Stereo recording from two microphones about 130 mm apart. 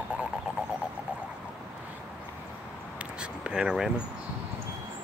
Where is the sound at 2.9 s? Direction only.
5° right (ahead or behind).